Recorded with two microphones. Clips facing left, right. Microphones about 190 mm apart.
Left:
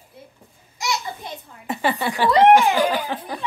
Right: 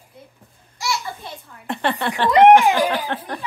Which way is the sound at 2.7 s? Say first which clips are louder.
Even; 5° left (ahead or behind).